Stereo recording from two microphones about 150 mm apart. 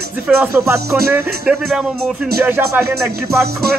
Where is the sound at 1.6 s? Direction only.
5° right (ahead or behind).